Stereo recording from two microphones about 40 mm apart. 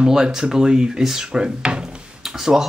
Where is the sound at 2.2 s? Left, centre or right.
Centre.